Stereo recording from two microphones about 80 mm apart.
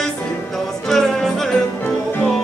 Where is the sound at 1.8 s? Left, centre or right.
Left.